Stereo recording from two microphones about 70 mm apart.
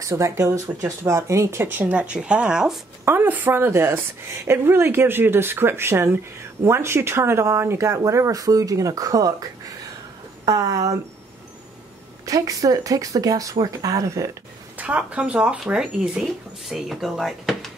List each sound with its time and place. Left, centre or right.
0.0 s speech: right
1.7 s a woman's voice: right
3.1 s a woman's voice: right
10.4 s speech: right
12.3 s speech: right
15.0 s a woman's voice: centre
16.3 s speech: centre